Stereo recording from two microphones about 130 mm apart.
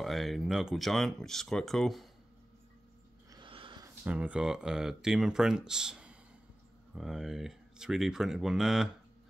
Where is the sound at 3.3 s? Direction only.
35° right (ahead or behind).